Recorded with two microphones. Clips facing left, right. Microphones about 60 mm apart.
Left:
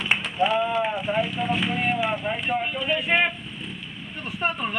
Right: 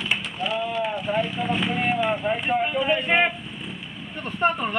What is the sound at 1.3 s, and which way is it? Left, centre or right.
Speech, centre.